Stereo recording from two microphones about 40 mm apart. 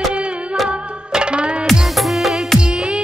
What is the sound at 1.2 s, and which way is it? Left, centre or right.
Music, right.